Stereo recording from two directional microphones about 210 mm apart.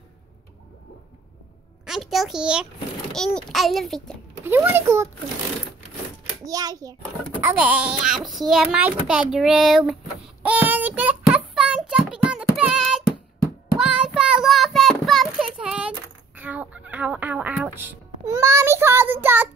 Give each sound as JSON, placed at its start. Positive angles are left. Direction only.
{"t": 1.9, "sound": "a child's voice", "side_deg": 0}
{"t": 4.5, "sound": "a child's voice", "side_deg": -10}
{"t": 6.4, "sound": "a child's voice", "side_deg": -15}
{"t": 7.2, "sound": "a child's voice", "side_deg": -5}
{"t": 13.7, "sound": "child singing", "side_deg": -5}
{"t": 16.3, "sound": "fowl", "side_deg": -5}